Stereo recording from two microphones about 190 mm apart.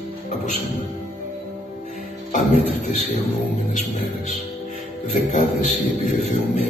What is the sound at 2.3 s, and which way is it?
A man's voice, 40° left (ahead or behind).